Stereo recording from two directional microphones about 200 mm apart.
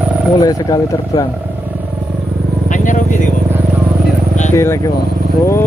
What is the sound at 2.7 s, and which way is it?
Vehicle, 40° left (ahead or behind).